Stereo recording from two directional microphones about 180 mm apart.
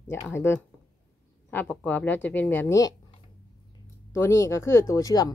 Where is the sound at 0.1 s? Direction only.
15° left (ahead or behind).